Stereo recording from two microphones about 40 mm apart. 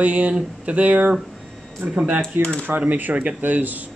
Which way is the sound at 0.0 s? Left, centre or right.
Right.